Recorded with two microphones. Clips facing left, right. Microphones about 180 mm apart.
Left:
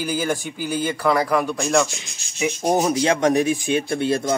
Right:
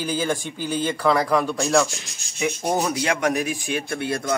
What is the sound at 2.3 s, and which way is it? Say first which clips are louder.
Speech: left 3 dB; 15° left (ahead or behind).